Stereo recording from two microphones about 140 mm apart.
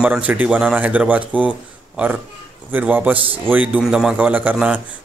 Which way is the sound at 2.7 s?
10° right (ahead or behind).